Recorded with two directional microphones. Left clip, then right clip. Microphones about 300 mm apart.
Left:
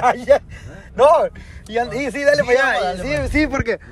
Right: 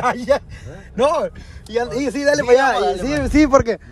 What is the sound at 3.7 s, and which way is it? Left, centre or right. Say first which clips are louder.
Speech: even; centre.